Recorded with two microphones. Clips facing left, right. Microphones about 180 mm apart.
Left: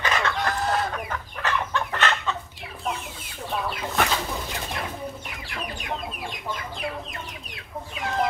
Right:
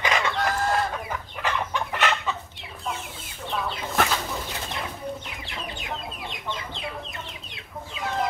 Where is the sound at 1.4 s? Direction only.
10° right (ahead or behind).